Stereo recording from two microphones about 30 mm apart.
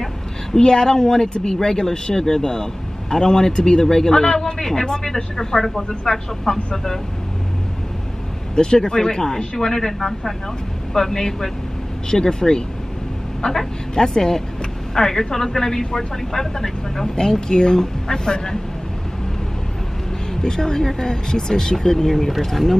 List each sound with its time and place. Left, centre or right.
0.0 s a sound: centre
0.7 s speech: left
8.5 s a woman's voice: left
20.4 s speech: left
21.9 s speech: centre